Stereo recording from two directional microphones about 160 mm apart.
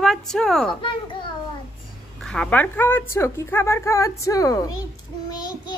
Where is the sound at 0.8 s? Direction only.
30° left (ahead or behind).